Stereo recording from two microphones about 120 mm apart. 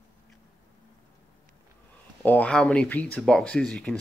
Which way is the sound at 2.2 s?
10° left (ahead or behind).